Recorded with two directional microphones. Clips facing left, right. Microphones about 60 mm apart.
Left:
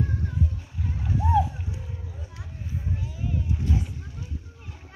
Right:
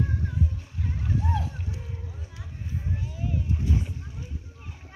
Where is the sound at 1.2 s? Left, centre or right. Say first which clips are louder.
Left 8 dB; centre.